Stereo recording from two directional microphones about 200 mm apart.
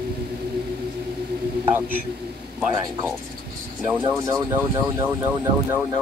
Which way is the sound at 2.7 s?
15° right (ahead or behind).